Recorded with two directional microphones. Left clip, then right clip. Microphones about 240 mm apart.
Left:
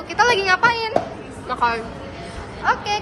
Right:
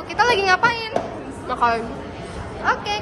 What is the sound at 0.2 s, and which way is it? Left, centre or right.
A woman's voice, centre.